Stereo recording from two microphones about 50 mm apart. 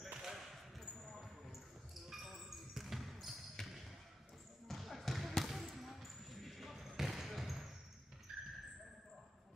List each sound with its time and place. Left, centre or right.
0.1 s basketball bounce: centre
0.7 s basketball bounce: centre
3.6 s basketball bounce: centre